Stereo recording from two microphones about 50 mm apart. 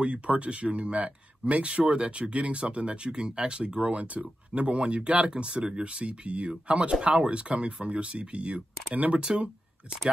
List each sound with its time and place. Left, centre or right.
0.0 s speech: right
9.2 s speech: centre